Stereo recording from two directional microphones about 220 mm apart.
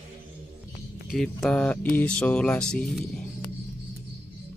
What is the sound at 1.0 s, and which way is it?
Speech, centre (ahead or behind).